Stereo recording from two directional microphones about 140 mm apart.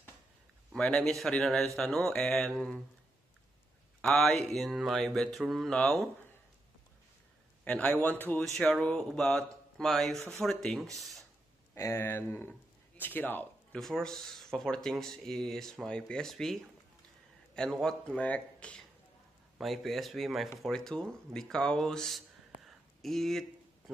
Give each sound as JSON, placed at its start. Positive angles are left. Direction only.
{"t": 0.7, "sound": "speech", "side_deg": 5}
{"t": 4.0, "sound": "speech", "side_deg": 0}
{"t": 7.6, "sound": "speech", "side_deg": 10}
{"t": 11.7, "sound": "speech", "side_deg": 20}
{"t": 13.7, "sound": "speech", "side_deg": 0}
{"t": 22.7, "sound": "a sound", "side_deg": 0}